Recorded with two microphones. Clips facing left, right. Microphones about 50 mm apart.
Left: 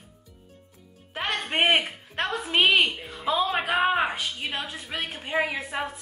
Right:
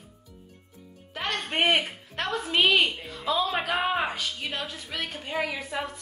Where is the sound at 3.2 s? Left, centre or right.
Left.